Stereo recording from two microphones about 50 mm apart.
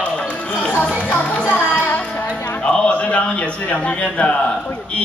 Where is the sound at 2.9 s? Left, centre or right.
Left.